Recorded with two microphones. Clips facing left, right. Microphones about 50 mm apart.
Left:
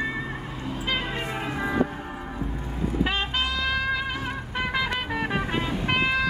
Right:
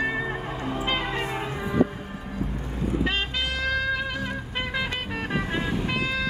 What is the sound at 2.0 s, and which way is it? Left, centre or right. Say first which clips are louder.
Vehicle: left 2 dB; centre.